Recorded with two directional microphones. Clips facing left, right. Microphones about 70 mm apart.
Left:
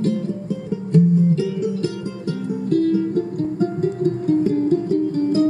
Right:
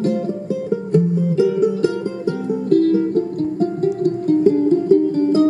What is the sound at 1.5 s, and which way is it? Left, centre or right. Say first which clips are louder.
Music: right 6 dB; right.